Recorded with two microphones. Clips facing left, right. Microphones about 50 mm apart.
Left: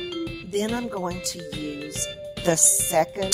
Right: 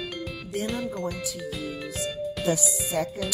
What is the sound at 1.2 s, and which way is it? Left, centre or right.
Speech, left.